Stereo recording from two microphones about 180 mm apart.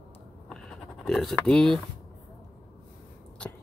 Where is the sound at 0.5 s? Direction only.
5° left (ahead or behind).